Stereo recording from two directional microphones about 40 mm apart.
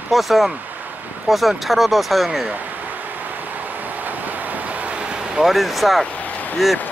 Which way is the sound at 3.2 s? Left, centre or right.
Right.